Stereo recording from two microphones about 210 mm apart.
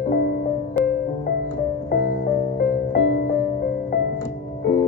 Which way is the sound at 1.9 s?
50° left (ahead or behind).